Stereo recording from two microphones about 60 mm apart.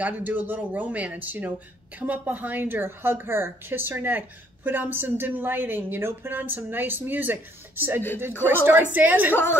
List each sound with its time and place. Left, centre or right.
0.0 s a woman's voice: right
9.3 s a woman's voice: left